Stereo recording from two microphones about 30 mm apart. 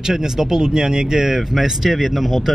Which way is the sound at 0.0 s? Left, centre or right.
Centre.